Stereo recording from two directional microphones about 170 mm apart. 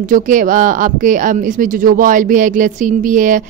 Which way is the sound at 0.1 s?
50° right (ahead or behind).